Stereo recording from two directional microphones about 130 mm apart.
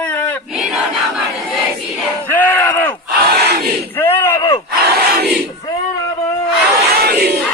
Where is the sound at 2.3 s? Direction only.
15° left (ahead or behind).